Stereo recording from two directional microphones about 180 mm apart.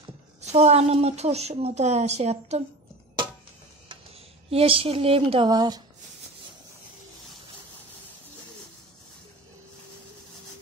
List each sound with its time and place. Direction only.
0.4 s a woman's voice: 35° right (ahead or behind)
4.5 s a woman's voice: 30° right (ahead or behind)